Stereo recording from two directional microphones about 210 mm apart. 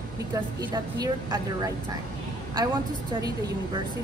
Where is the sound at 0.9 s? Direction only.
15° right (ahead or behind).